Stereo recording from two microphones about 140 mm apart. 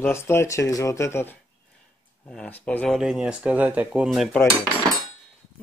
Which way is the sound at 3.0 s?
5° right (ahead or behind).